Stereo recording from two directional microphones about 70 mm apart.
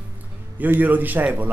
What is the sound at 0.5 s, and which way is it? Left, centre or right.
Speech, right.